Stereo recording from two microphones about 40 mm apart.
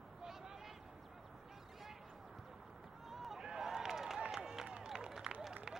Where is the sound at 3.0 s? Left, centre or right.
Centre.